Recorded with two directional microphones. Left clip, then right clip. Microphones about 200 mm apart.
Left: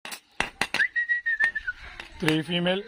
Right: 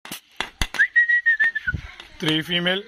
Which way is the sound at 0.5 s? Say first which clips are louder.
Right 5 dB; 40° left (ahead or behind).